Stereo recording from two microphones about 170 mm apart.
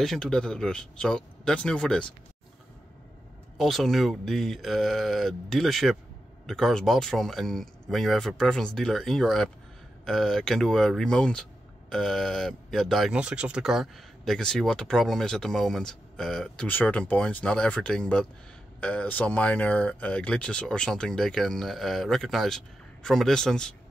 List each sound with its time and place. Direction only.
0.0 s speech: 5° left (ahead or behind)
3.5 s speech: centre (ahead or behind)